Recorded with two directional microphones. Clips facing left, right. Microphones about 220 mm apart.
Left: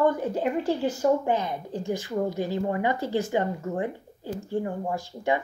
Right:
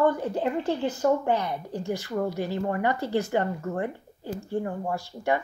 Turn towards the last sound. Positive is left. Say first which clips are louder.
# even
turn(degrees=15)  # may be behind; listen again after turning